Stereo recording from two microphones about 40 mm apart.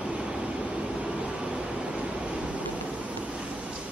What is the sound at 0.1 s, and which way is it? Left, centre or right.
Vehicle, right.